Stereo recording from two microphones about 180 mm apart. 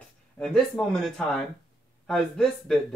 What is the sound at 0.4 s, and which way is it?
Speech, centre (ahead or behind).